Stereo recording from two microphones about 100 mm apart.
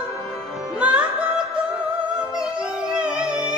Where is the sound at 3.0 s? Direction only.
10° right (ahead or behind).